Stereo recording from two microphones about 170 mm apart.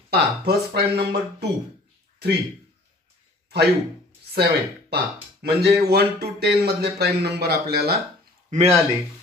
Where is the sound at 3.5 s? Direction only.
75° right (ahead or behind).